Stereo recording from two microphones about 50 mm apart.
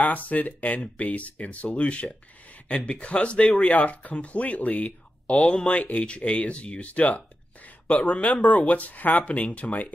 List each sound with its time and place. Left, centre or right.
0.0 s speech: left